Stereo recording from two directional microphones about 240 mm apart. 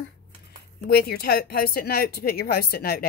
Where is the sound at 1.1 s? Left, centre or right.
Left.